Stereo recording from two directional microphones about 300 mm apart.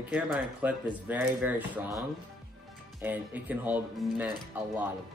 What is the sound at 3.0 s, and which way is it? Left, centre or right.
Speech, centre.